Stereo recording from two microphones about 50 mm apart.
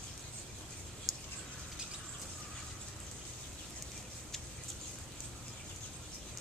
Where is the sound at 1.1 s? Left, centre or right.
Centre.